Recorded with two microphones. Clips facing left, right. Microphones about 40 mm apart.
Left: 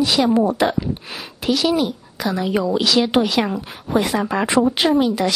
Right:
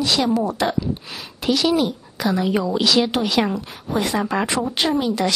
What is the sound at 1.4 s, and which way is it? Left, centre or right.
A woman's voice, centre.